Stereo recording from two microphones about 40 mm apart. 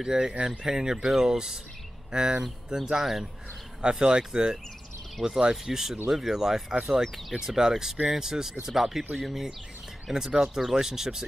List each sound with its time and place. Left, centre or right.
0.0 s speech: centre
3.8 s speech: right; by 7.3 s centre
7.3 s speech: centre